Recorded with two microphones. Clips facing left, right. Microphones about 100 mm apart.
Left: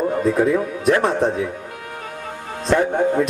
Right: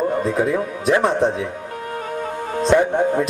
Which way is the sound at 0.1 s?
Centre (ahead or behind).